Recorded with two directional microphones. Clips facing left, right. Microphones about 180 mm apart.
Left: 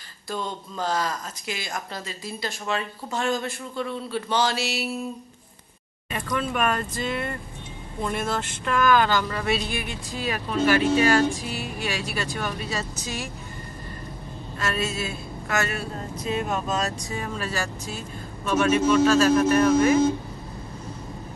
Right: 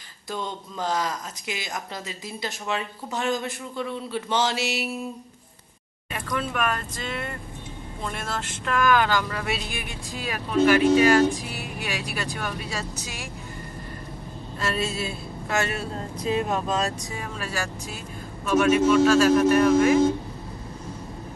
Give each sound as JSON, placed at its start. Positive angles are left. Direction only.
{"t": 0.3, "sound": "speech", "side_deg": -15}
{"t": 6.2, "sound": "speech", "side_deg": 0}
{"t": 8.8, "sound": "speech", "side_deg": -10}
{"t": 14.6, "sound": "speech", "side_deg": -30}
{"t": 17.2, "sound": "speech", "side_deg": -10}